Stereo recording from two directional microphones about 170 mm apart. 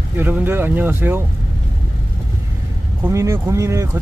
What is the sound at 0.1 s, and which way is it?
Speech, 10° right (ahead or behind).